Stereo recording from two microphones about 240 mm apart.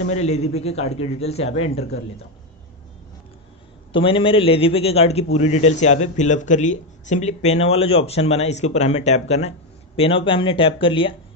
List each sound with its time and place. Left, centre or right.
0.1 s a man's voice: left
3.9 s a man's voice: left